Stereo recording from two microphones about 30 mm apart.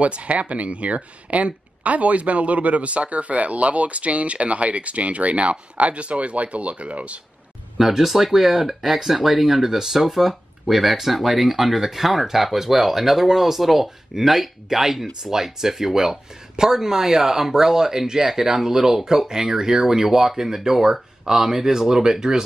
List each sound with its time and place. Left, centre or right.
0.0 s speech: right
7.8 s speech: centre